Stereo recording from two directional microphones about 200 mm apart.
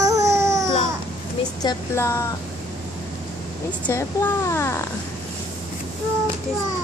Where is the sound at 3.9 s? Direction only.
15° left (ahead or behind).